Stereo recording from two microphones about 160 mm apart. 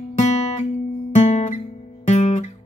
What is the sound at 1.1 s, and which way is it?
Guitar, 45° left (ahead or behind).